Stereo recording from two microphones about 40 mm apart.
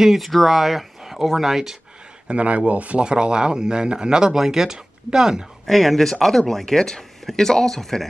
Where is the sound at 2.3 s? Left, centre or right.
Right.